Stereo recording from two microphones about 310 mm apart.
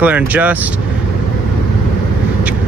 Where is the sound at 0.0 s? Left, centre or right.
Centre.